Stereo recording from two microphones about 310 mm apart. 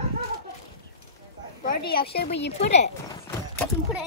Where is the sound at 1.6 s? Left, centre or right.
Left.